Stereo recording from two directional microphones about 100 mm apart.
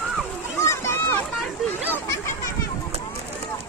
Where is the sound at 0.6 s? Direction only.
25° left (ahead or behind).